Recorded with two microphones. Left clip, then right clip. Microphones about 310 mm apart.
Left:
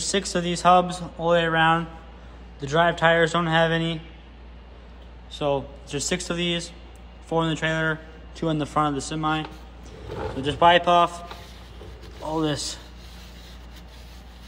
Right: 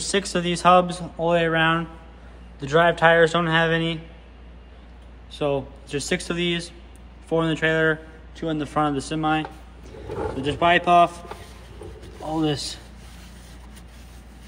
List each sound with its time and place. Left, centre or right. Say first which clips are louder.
0.0 s a man's voice: right 1 dB; centre
5.3 s a man's voice: even; centre
12.3 s a man's voice: right 1 dB; centre